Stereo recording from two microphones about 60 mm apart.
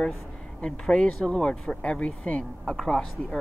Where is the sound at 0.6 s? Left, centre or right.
Centre.